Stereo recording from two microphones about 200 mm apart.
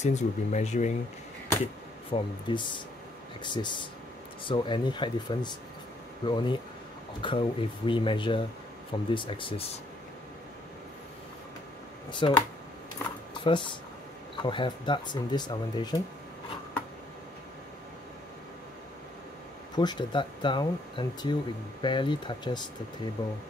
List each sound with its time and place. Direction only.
0.0 s speech: 35° left (ahead or behind)
2.1 s speech: 25° left (ahead or behind)
12.1 s speech: 25° left (ahead or behind)
13.4 s speech: 25° left (ahead or behind)
19.8 s speech: 20° left (ahead or behind)